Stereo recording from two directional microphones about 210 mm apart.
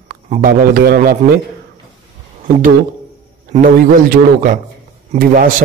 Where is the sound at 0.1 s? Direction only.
45° right (ahead or behind).